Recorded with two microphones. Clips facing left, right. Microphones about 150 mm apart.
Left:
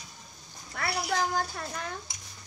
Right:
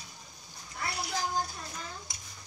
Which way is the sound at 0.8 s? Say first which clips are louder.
Left 4 dB; 75° left (ahead or behind).